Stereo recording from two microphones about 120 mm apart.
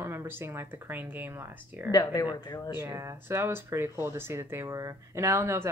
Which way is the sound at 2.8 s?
20° right (ahead or behind).